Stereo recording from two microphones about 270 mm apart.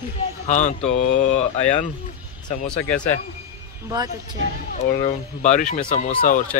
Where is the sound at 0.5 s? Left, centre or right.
Left.